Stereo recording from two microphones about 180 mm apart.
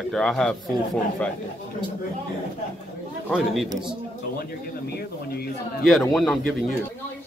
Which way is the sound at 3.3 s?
Centre (ahead or behind).